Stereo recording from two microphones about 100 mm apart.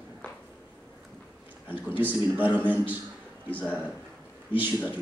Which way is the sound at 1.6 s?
20° right (ahead or behind).